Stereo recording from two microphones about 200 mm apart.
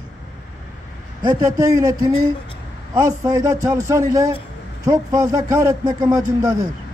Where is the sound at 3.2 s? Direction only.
20° right (ahead or behind).